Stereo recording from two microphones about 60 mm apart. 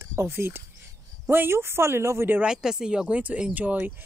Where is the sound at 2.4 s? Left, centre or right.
Centre.